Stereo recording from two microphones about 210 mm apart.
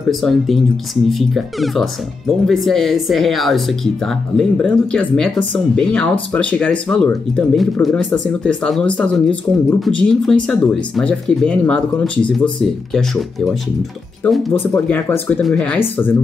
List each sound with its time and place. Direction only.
0.1 s speech: centre (ahead or behind)
14.2 s speech: 10° left (ahead or behind)